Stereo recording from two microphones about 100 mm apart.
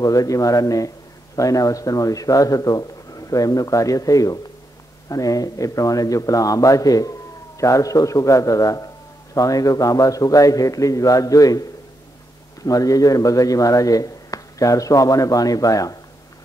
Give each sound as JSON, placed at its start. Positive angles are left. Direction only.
{"t": 0.0, "sound": "a man's voice", "side_deg": 35}
{"t": 12.6, "sound": "a man's voice", "side_deg": 35}